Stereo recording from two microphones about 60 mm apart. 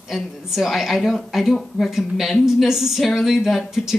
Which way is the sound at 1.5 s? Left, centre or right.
Centre.